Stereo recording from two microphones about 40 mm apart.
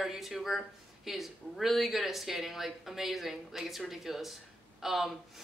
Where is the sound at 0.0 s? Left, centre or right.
Centre.